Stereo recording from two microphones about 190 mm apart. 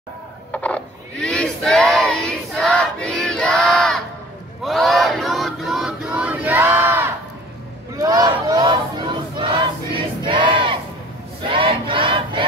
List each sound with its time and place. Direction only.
0.5 s battle cry: 5° left (ahead or behind); by 10.7 s 25° right (ahead or behind)
11.4 s crowd: 25° right (ahead or behind)